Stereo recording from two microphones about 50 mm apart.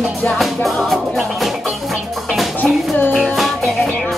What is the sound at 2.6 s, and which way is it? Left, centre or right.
Music, centre.